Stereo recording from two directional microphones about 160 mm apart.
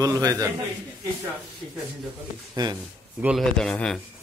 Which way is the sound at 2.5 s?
25° right (ahead or behind).